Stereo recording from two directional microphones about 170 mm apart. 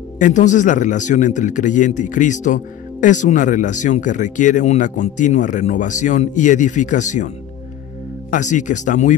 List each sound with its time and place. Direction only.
0.2 s a man's voice: 45° left (ahead or behind)
8.3 s a man's voice: 45° left (ahead or behind)